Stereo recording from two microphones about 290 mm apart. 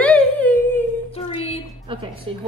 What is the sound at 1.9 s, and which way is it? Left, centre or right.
Speech, centre.